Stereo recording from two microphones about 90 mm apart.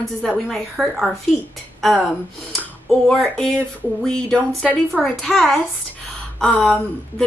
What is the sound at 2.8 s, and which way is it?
Speech, 5° left (ahead or behind).